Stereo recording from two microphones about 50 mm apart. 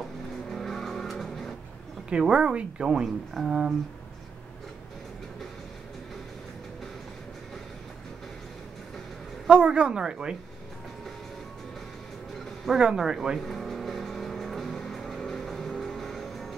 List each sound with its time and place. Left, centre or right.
0.5 s vehicle: centre
2.3 s speech: right
3.0 s speech: centre
9.5 s speech: centre
12.7 s speech: centre
13.4 s music: centre